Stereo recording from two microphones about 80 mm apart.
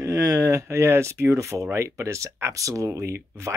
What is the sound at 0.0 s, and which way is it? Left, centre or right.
Speech, right.